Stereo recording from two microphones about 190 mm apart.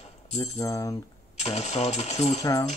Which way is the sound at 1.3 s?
35° left (ahead or behind).